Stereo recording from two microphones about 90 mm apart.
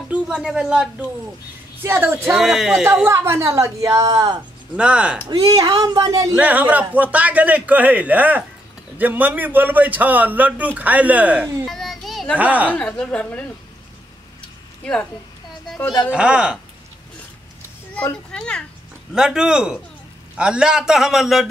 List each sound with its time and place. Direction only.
0.1 s speech: 10° right (ahead or behind)
1.8 s a man's voice: 25° right (ahead or behind)
2.3 s a man's voice: 5° right (ahead or behind)
3.1 s a woman's voice: 30° right (ahead or behind)
4.7 s a man's voice: 10° right (ahead or behind)
5.8 s a woman's voice: 40° right (ahead or behind)
6.3 s a man's voice: 20° right (ahead or behind)
11.6 s children playing: centre (ahead or behind)
12.4 s a man's voice: 15° right (ahead or behind)
12.7 s a woman's voice: 10° left (ahead or behind)
16.1 s a man's voice: 10° right (ahead or behind)
18.3 s a woman's voice: 10° left (ahead or behind)
19.1 s a man's voice: 10° right (ahead or behind)